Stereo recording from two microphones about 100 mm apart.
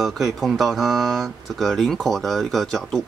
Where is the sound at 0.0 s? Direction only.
Centre (ahead or behind).